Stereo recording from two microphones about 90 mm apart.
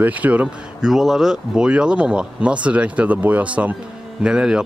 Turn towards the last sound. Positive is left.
turn(degrees=-10)  # may be behind; listen again after turning